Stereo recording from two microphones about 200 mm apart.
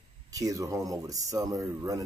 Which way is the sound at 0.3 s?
15° right (ahead or behind).